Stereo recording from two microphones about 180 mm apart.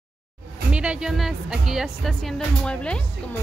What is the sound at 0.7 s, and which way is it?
A woman's voice, 5° right (ahead or behind).